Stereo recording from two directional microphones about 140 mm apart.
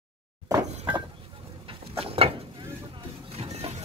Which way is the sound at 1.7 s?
40° right (ahead or behind).